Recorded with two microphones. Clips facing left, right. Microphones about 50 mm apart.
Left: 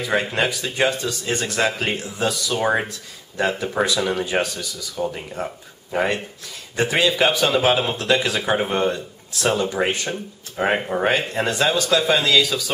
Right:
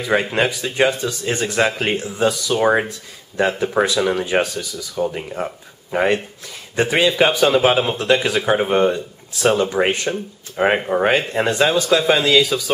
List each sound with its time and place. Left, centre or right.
0.0 s speech: centre
11.8 s speech: centre